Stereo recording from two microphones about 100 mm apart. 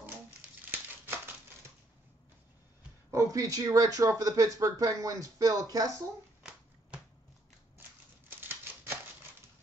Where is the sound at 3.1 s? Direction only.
30° right (ahead or behind).